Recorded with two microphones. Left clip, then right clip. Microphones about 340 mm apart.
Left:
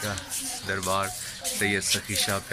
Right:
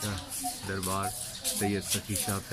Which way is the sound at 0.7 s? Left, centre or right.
Centre.